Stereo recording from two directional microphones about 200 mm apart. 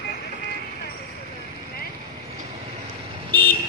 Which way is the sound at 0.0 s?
50° left (ahead or behind).